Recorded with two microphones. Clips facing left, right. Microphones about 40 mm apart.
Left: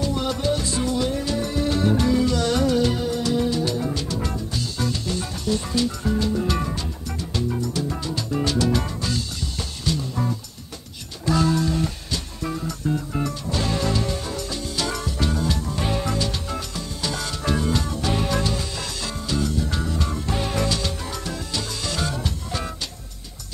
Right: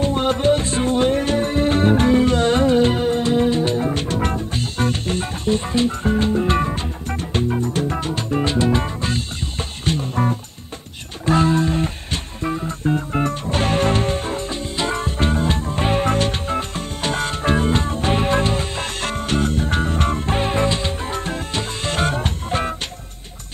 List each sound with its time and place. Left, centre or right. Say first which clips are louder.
0.0 s music: right 6 dB; right
8.4 s music: right 3 dB; right